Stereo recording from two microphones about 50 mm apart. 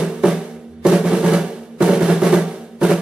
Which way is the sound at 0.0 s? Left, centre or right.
Centre.